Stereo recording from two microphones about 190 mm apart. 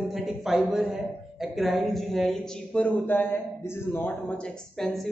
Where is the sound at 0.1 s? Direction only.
Centre (ahead or behind).